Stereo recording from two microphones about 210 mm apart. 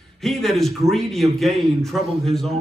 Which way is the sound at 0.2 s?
Centre (ahead or behind).